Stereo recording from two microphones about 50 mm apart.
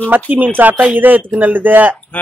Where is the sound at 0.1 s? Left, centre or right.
Right.